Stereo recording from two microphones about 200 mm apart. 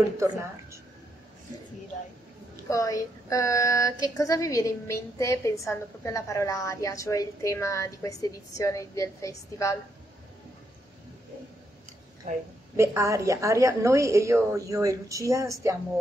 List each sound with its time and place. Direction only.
2.7 s a woman's voice: 15° left (ahead or behind)
12.7 s a woman's voice: 15° right (ahead or behind)